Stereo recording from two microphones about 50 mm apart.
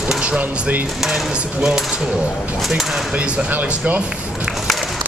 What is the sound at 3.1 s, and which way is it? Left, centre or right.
Speech, right.